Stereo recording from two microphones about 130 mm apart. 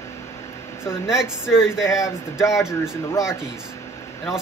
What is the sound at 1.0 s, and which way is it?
Speech, 5° right (ahead or behind).